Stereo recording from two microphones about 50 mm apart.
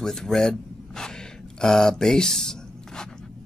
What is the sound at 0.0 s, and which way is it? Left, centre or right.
Speech, centre.